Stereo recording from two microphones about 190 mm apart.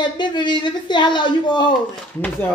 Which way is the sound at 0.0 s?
25° left (ahead or behind).